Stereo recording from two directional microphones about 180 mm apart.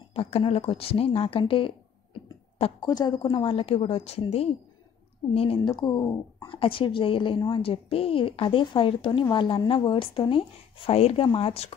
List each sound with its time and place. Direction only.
0.1 s speech: 35° left (ahead or behind)
2.8 s speech: 25° left (ahead or behind)